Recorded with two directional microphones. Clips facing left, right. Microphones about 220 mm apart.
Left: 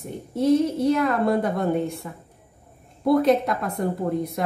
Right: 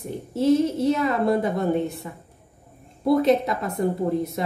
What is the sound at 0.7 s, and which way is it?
A woman's voice, centre (ahead or behind).